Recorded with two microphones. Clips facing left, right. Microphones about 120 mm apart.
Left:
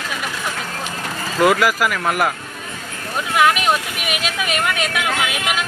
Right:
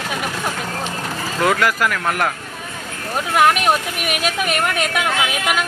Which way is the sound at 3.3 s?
45° right (ahead or behind).